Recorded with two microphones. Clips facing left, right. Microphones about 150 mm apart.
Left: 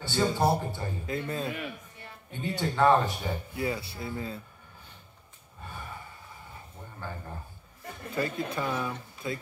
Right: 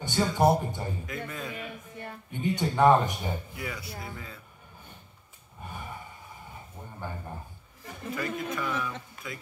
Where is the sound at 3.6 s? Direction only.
30° left (ahead or behind).